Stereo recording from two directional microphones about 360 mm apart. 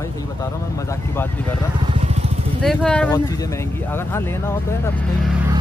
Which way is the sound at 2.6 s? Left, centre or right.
Centre.